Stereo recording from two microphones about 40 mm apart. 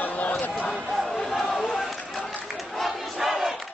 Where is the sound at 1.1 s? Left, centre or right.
Centre.